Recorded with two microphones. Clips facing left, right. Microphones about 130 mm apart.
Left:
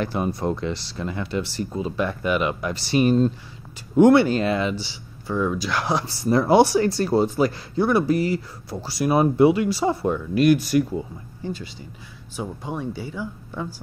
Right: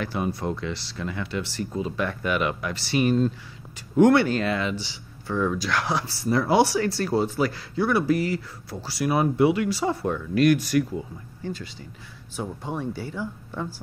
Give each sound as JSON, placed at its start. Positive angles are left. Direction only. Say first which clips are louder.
{"t": 0.0, "sound": "speech", "louder": "left 3 dB", "side_deg": 35}
{"t": 5.2, "sound": "speech", "louder": "left 1 dB", "side_deg": 10}
{"t": 9.7, "sound": "speech", "louder": "left 3 dB", "side_deg": 15}
{"t": 12.4, "sound": "speech", "louder": "left 1 dB", "side_deg": 5}